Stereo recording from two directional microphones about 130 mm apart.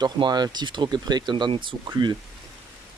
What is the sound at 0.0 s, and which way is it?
Speech, 35° right (ahead or behind).